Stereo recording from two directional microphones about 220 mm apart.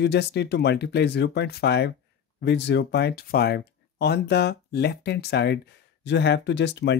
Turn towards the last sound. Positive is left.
turn(degrees=50)  # may be behind; listen again after turning